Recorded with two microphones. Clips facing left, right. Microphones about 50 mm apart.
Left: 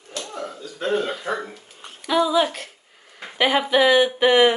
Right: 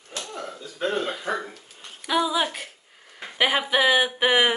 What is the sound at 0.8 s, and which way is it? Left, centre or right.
Speech, centre.